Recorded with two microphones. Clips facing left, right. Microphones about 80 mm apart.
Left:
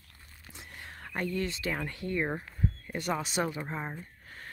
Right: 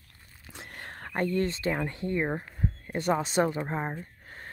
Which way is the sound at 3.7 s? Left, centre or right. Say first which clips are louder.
Right 5 dB; right.